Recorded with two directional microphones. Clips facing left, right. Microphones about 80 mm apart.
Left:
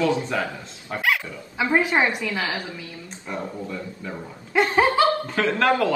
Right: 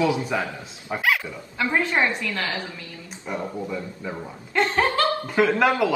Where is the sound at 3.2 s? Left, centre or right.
Centre.